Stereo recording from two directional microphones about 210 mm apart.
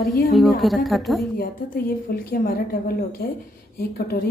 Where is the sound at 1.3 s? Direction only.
45° left (ahead or behind).